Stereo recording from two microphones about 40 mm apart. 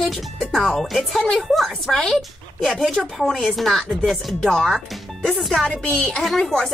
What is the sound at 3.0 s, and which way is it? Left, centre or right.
Speech, centre.